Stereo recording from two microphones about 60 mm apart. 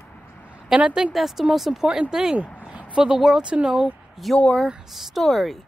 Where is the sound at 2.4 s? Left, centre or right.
Centre.